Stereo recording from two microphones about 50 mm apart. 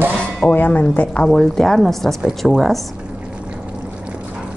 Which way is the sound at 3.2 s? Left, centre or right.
Right.